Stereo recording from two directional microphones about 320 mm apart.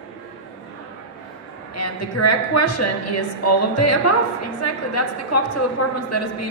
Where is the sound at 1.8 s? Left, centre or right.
Left.